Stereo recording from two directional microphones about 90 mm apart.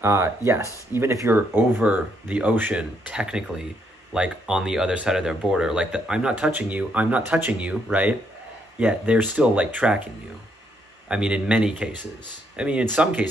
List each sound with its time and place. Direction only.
0.0 s speech: 30° right (ahead or behind)
11.1 s speech: 10° right (ahead or behind)